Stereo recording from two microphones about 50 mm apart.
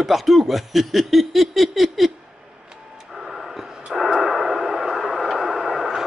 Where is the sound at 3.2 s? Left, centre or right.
Centre.